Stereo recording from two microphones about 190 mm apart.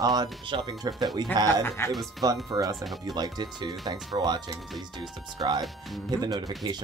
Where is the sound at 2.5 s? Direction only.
20° right (ahead or behind).